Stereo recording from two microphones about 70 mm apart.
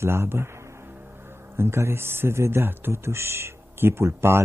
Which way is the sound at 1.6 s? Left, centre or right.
Right.